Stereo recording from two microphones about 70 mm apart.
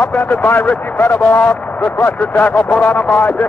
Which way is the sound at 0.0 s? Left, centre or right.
Left.